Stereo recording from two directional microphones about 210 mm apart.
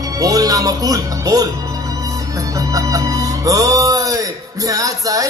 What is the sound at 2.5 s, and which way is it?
Music, 15° right (ahead or behind).